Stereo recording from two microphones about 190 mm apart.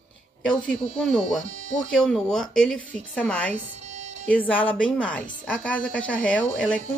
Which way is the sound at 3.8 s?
35° right (ahead or behind).